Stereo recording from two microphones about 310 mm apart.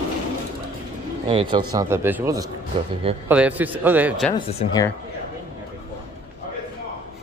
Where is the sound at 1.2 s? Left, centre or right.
Centre.